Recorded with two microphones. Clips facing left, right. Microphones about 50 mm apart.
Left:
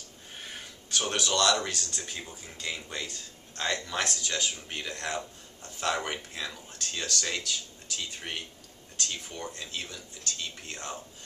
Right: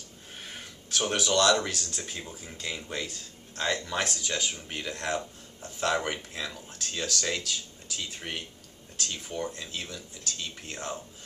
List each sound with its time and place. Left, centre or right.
0.4 s speech: centre